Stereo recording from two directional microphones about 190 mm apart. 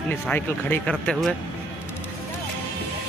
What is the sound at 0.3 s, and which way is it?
Speech, 5° left (ahead or behind).